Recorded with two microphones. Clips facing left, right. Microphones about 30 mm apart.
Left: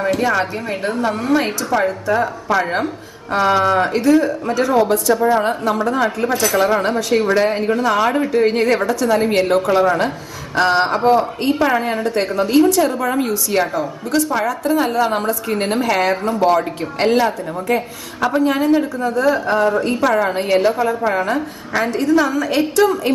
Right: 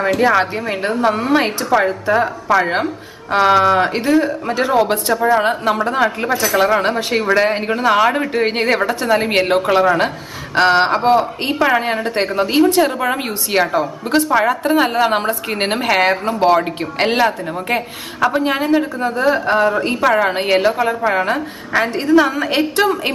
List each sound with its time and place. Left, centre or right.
0.2 s a woman's voice: right
1.3 s a woman's voice: right
2.4 s a woman's voice: centre
3.3 s a woman's voice: right
5.7 s a woman's voice: right
6.5 s speech: centre
7.2 s a woman's voice: right
8.2 s a woman's voice: right
9.8 s a woman's voice: right
10.5 s a woman's voice: right
20.3 s a woman's voice: right
20.6 s a woman's voice: right